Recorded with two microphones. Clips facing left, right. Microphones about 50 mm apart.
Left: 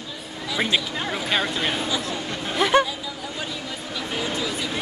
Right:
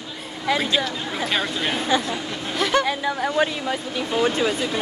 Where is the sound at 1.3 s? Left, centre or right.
Centre.